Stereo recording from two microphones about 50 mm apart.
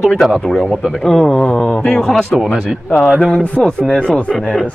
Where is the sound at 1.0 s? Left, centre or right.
Centre.